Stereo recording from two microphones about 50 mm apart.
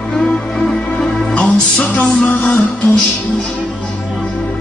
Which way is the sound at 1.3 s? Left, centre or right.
Left.